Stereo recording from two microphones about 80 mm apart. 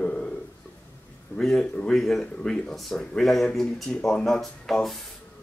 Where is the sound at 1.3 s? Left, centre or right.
Centre.